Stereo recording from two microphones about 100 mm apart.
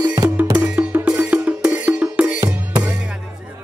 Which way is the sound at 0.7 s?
10° right (ahead or behind).